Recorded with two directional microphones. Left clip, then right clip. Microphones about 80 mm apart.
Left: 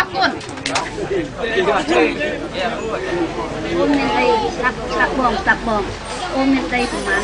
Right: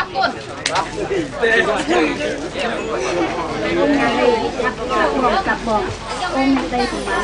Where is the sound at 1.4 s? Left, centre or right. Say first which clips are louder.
Right 6 dB; right.